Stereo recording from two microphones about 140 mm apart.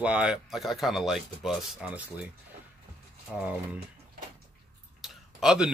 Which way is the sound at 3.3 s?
Centre (ahead or behind).